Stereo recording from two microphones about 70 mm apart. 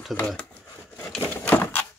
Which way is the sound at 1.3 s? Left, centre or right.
Left.